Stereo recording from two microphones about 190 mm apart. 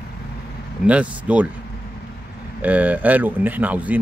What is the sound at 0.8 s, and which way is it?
Speech, 5° right (ahead or behind).